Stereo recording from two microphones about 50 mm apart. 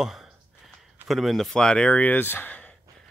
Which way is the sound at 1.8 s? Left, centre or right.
Left.